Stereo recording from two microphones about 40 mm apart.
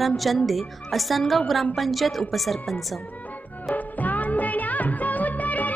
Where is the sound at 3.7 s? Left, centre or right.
Left.